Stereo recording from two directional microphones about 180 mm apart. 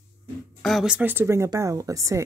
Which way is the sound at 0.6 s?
Centre (ahead or behind).